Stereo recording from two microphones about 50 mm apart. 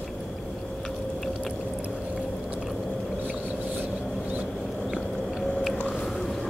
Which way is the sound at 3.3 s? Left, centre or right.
Right.